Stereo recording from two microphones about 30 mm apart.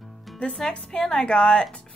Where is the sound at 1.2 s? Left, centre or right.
Left.